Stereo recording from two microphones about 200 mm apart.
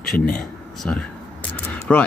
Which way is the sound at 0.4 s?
5° left (ahead or behind).